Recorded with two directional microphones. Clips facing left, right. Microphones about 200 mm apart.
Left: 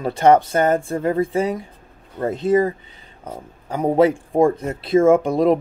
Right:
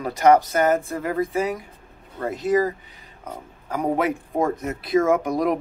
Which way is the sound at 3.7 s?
30° left (ahead or behind).